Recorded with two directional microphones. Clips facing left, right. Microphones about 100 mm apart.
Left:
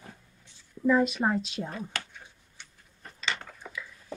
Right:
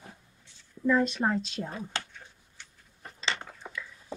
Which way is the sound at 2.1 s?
10° left (ahead or behind).